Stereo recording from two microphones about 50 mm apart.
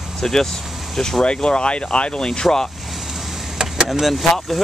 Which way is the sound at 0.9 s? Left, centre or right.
Centre.